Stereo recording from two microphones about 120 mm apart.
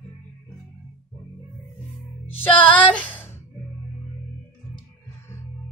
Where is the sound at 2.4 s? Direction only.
15° left (ahead or behind).